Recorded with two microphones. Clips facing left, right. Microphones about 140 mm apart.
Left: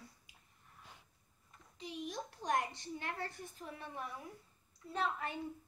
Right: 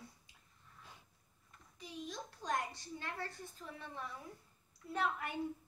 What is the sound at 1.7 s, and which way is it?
A child's voice, 20° left (ahead or behind).